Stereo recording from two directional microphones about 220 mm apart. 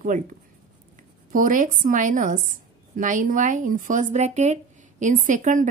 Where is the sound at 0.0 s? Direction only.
35° right (ahead or behind).